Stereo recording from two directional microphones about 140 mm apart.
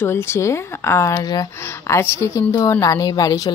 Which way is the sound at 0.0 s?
15° left (ahead or behind).